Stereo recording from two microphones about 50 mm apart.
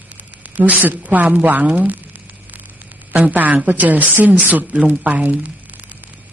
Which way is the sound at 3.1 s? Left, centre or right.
Right.